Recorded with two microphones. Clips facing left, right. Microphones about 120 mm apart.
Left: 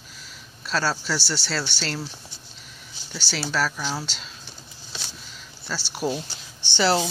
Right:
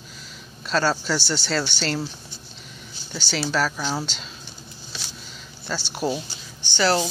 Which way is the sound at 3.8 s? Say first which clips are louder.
Right 3 dB; 20° right (ahead or behind).